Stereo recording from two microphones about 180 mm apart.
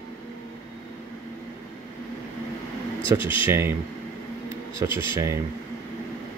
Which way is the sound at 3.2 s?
30° left (ahead or behind).